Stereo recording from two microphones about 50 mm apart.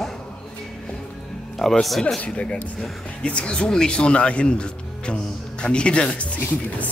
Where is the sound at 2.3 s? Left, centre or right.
Left.